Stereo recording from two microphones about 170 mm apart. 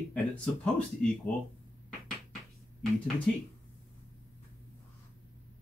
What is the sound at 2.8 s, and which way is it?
Speech, centre (ahead or behind).